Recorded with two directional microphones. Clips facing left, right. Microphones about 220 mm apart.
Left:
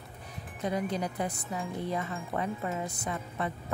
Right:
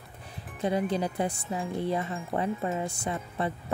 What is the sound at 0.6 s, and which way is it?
Speech, 30° right (ahead or behind).